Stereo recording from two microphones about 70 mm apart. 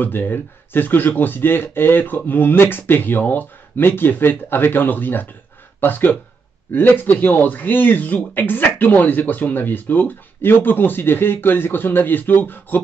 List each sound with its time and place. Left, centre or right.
0.0 s speech: left